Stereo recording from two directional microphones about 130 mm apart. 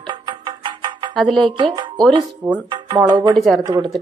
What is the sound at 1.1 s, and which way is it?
Speech, 5° left (ahead or behind).